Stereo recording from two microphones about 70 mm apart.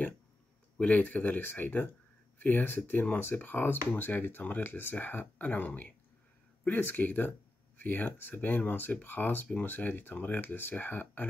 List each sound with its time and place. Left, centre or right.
0.7 s speech: left